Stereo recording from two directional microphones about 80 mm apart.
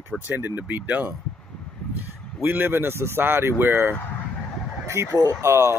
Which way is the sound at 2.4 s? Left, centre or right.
Right.